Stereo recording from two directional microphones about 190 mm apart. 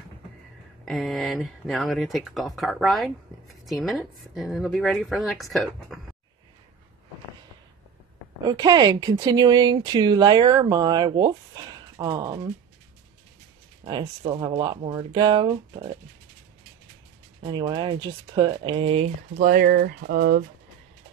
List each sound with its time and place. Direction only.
0.8 s speech: centre (ahead or behind)
8.5 s speech: 20° right (ahead or behind)
13.8 s speech: 25° right (ahead or behind)
17.4 s speech: 25° right (ahead or behind)
19.3 s speech: 50° right (ahead or behind)